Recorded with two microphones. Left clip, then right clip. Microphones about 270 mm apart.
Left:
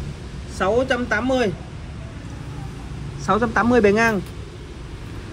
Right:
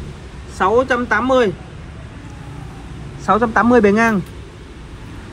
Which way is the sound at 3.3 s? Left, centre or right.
Right.